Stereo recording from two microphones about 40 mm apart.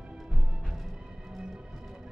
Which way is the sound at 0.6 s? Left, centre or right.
Centre.